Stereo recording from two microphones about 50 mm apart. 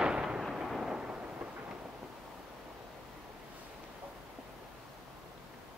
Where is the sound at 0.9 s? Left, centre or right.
Centre.